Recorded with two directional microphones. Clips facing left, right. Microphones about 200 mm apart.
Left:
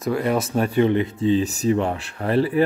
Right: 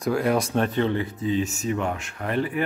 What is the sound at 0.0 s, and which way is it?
Speech, centre (ahead or behind).